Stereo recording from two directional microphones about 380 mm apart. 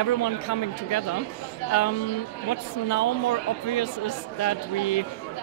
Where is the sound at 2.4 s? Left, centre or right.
Left.